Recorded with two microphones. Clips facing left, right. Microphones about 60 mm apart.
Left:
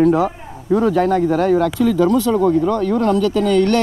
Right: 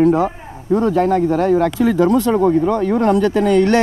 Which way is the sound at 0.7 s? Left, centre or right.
Left.